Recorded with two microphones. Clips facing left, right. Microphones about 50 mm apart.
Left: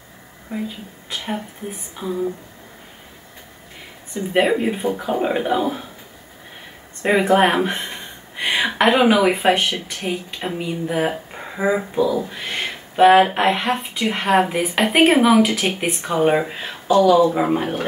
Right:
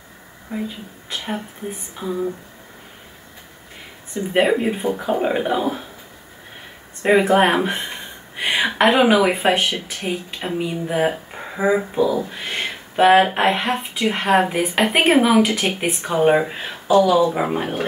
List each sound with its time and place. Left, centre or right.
0.5 s a woman's voice: centre
1.1 s speech: centre
4.1 s speech: centre
7.0 s speech: centre